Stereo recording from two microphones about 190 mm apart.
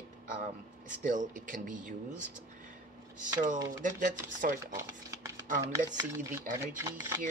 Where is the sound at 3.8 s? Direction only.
40° right (ahead or behind).